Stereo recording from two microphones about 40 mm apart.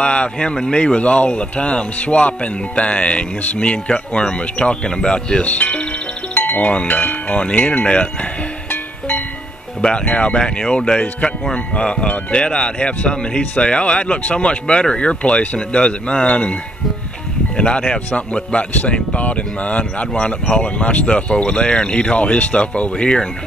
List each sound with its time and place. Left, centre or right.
0.0 s speech: left
6.4 s music: left
6.9 s speech: left
8.6 s music: left
9.8 s speech: left
10.4 s speech: centre
17.6 s speech: left